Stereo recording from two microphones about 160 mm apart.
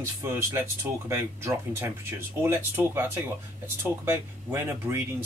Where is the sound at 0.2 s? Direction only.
15° right (ahead or behind).